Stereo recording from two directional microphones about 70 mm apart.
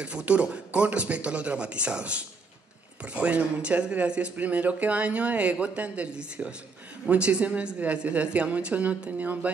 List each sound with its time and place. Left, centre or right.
0.0 s speech: centre